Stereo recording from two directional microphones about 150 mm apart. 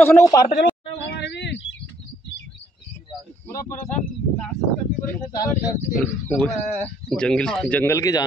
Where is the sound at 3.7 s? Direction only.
60° left (ahead or behind).